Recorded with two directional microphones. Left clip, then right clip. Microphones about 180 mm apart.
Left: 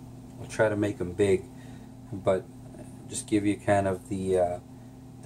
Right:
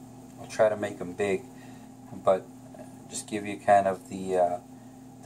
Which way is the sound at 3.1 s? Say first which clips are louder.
Left 7 dB; 30° left (ahead or behind).